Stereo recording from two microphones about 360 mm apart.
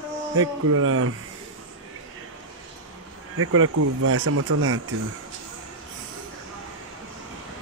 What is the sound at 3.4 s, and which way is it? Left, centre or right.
Speech, right.